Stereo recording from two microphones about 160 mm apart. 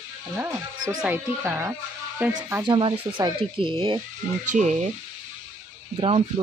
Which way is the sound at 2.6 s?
30° right (ahead or behind).